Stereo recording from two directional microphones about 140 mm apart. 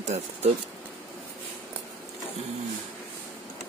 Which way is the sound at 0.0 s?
55° right (ahead or behind).